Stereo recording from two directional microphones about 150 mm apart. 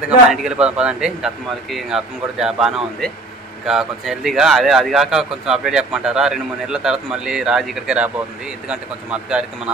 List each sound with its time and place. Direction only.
0.3 s speech: 5° right (ahead or behind)